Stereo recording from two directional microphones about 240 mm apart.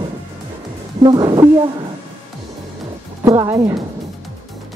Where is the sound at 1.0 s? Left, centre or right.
Centre.